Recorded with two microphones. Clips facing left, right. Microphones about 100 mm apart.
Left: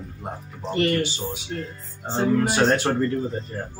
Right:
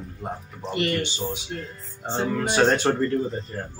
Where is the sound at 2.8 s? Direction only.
5° left (ahead or behind).